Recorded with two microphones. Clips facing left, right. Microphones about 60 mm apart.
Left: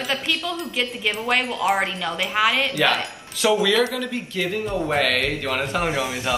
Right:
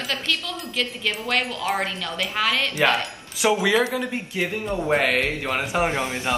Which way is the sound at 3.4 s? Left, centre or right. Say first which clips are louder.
Left 1 dB; right.